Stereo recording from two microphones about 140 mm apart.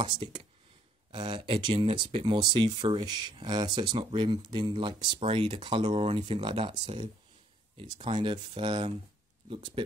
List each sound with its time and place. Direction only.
0.0 s speech: 35° right (ahead or behind)
4.9 s speech: 45° right (ahead or behind)